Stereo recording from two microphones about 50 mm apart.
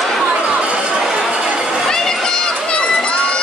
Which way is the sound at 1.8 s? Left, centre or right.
Centre.